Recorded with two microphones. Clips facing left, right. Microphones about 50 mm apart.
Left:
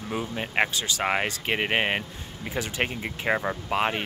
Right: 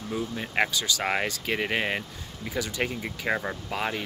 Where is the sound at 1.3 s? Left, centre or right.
Left.